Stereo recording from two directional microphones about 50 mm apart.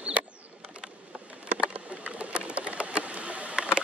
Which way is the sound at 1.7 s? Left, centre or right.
Right.